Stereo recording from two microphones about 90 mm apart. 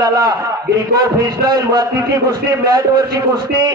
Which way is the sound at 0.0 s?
45° right (ahead or behind).